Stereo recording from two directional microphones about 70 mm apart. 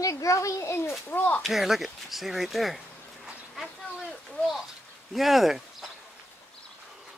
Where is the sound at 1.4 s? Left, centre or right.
Centre.